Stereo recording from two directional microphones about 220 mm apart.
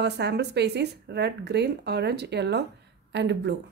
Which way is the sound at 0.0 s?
50° right (ahead or behind).